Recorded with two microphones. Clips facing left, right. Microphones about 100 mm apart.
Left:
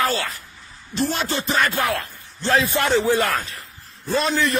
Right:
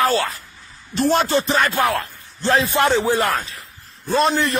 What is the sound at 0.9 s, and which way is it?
Speech, 45° right (ahead or behind).